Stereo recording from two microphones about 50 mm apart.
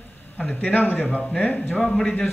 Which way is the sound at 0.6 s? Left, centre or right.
Left.